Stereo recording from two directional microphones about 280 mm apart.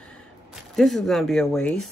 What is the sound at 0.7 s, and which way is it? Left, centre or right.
Speech, centre.